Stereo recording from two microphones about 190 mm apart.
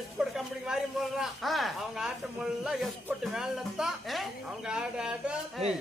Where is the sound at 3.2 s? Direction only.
5° right (ahead or behind).